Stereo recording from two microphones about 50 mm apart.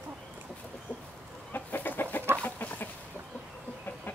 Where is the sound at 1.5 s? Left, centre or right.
Left.